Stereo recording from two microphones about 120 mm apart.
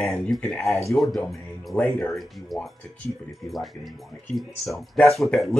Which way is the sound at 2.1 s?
Centre (ahead or behind).